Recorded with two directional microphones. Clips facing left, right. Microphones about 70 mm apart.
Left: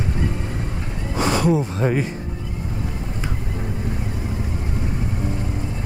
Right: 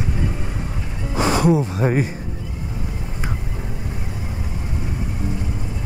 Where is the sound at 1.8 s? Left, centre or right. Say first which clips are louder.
Even; centre.